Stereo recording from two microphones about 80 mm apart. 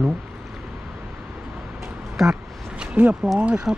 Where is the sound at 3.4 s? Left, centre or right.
Centre.